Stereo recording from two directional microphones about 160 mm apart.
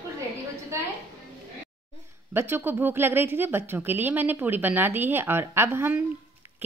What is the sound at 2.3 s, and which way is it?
A woman's voice, 15° right (ahead or behind).